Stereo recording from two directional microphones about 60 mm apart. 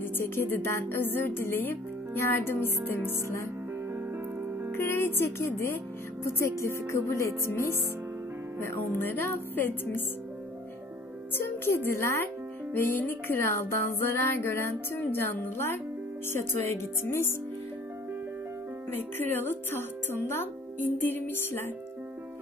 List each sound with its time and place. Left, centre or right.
0.0 s speech: left
3.9 s music: right
4.7 s speech: left
8.9 s speech: left
11.3 s speech: left
12.7 s speech: left
18.9 s speech: left